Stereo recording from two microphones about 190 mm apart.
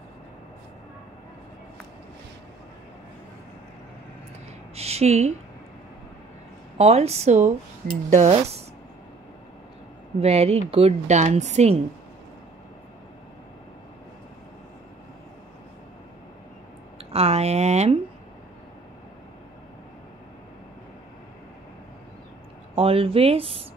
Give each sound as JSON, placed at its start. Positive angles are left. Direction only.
{"t": 4.7, "sound": "speech", "side_deg": -35}
{"t": 6.8, "sound": "speech", "side_deg": -35}
{"t": 10.2, "sound": "speech", "side_deg": -30}
{"t": 17.0, "sound": "speech", "side_deg": -30}
{"t": 22.8, "sound": "speech", "side_deg": -30}